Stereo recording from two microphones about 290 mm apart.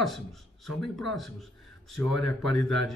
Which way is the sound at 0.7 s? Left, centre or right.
Centre.